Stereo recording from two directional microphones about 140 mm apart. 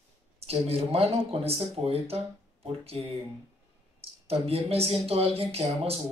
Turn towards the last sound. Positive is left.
turn(degrees=-45)  # may be behind; listen again after turning